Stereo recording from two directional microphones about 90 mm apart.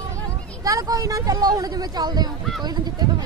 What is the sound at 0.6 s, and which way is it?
Speech, 40° right (ahead or behind).